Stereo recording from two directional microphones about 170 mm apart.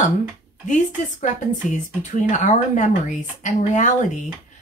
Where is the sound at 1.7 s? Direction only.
45° left (ahead or behind).